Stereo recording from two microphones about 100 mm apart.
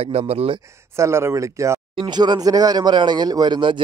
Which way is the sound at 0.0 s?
90° right.